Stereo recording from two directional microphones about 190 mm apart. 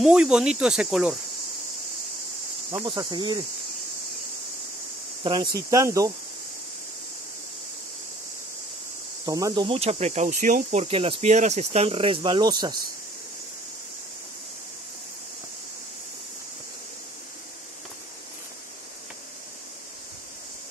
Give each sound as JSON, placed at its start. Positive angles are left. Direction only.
{"t": 0.0, "sound": "speech", "side_deg": -5}
{"t": 2.7, "sound": "speech", "side_deg": -20}
{"t": 5.2, "sound": "speech", "side_deg": -25}
{"t": 9.2, "sound": "speech", "side_deg": -20}